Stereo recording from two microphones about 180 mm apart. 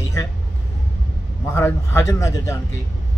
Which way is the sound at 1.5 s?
15° left (ahead or behind).